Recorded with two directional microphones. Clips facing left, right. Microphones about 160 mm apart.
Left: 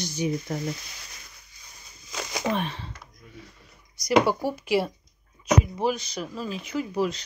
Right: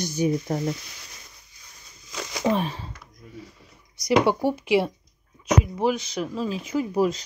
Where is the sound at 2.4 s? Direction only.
35° right (ahead or behind).